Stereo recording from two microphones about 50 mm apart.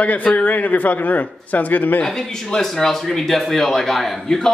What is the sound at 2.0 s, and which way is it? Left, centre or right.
Speech, centre.